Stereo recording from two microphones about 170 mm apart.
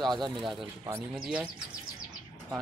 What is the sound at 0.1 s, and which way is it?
Speech, 25° right (ahead or behind).